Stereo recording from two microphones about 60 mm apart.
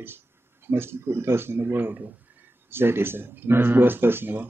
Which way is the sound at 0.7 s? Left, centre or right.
Right.